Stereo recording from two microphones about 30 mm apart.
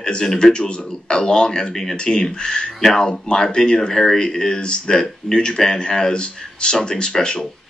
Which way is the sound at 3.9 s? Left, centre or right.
Centre.